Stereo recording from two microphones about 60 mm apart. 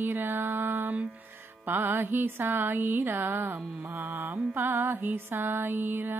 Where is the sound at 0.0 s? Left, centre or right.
Right.